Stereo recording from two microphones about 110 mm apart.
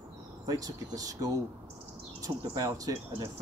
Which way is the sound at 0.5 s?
35° right (ahead or behind).